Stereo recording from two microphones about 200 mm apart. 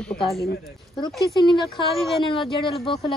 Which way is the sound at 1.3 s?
25° left (ahead or behind).